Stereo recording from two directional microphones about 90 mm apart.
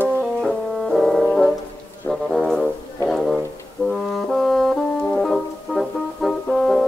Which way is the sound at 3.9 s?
Centre (ahead or behind).